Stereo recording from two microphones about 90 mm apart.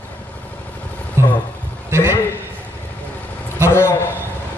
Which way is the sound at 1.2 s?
30° right (ahead or behind).